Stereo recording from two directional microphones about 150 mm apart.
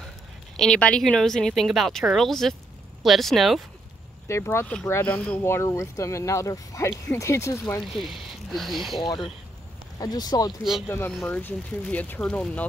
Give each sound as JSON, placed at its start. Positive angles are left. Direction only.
{"t": 0.6, "sound": "speech", "side_deg": 5}
{"t": 4.3, "sound": "speech", "side_deg": 20}
{"t": 7.8, "sound": "speech", "side_deg": 0}
{"t": 8.9, "sound": "speech", "side_deg": 30}
{"t": 11.1, "sound": "speech", "side_deg": 10}